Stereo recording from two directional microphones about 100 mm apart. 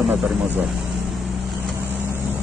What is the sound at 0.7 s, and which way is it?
Vehicle, centre (ahead or behind).